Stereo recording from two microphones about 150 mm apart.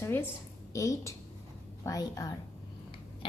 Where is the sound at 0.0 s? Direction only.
15° left (ahead or behind).